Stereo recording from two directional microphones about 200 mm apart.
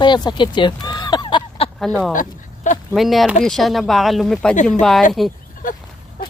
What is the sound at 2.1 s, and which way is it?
Speech, 40° left (ahead or behind).